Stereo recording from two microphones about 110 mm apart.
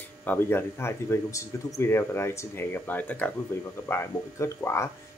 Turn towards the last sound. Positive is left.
turn(degrees=25)  # may be behind; listen again after turning